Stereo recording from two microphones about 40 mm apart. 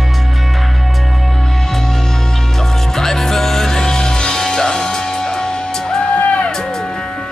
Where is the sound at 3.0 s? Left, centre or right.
Centre.